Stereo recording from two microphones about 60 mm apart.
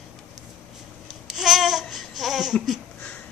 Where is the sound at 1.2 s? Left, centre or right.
Centre.